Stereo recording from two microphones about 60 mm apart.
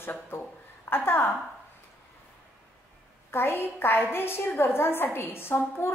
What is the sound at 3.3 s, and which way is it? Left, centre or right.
A woman's voice, left.